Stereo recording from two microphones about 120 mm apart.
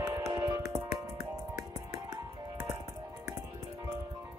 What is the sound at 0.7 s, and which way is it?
Music, 20° right (ahead or behind).